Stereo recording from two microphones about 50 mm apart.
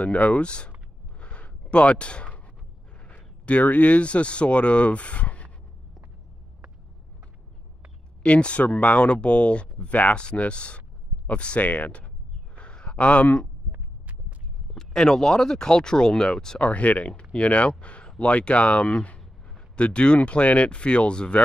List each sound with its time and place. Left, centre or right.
0.0 s speech: left
1.2 s a sound: left
3.4 s speech: left
8.2 s speech: left
12.5 s a sound: left
13.7 s heart sounds: right
14.7 s speech: centre
16.6 s speech: left